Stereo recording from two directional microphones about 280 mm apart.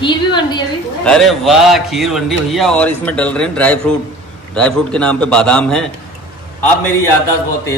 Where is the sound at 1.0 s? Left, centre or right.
Centre.